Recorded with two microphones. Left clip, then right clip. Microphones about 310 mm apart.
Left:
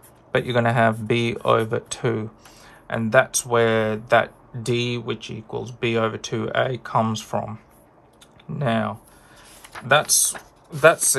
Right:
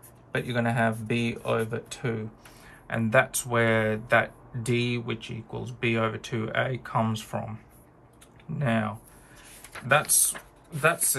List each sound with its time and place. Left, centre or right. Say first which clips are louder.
0.3 s speech: left 8 dB; left
8.5 s speech: left 5 dB; centre